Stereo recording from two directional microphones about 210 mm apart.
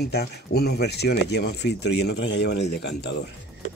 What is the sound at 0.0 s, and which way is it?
Speech, 50° left (ahead or behind).